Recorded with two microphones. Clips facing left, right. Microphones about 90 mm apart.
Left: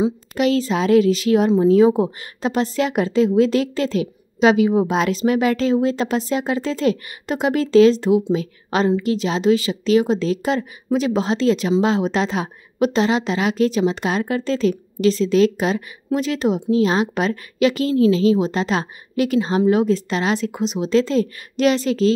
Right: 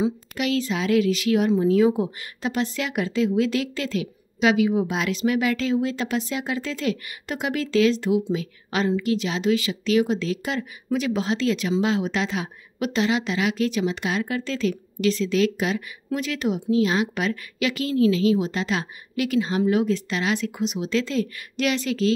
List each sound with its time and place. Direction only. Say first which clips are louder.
0.3 s a woman's voice: left 6 dB; 35° left (ahead or behind)